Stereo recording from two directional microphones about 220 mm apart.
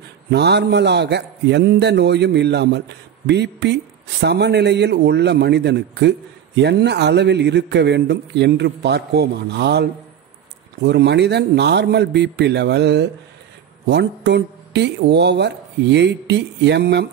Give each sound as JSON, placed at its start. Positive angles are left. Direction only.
{"t": 0.3, "sound": "a man's voice", "side_deg": -50}